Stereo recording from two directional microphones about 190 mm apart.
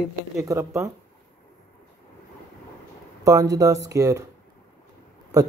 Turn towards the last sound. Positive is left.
turn(degrees=-20)  # may be behind; listen again after turning